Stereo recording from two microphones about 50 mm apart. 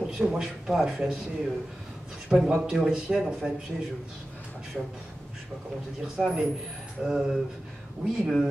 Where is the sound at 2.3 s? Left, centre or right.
Right.